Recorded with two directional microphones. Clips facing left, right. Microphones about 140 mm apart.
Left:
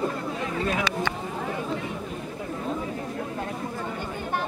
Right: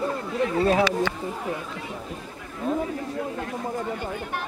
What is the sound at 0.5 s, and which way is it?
Speech, 35° right (ahead or behind).